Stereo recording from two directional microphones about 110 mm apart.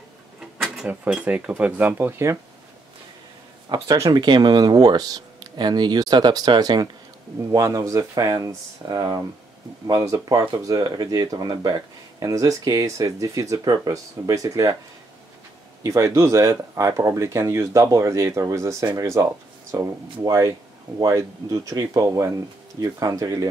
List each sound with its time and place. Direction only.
0.7 s speech: 10° right (ahead or behind)
3.6 s speech: 35° right (ahead or behind)
15.8 s speech: 30° right (ahead or behind)